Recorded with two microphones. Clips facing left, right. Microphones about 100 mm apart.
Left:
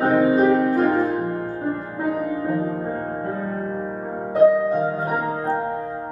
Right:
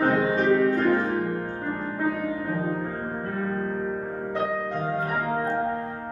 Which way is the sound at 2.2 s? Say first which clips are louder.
Left 4 dB; 30° left (ahead or behind).